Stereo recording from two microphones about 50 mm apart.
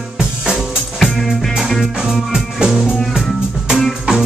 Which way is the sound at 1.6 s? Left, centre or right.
Centre.